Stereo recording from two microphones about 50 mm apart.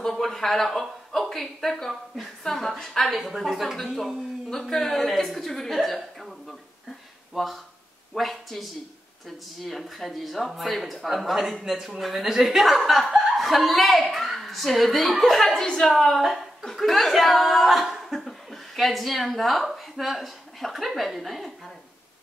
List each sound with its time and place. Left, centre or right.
0.0 s speech: centre
7.3 s speech: centre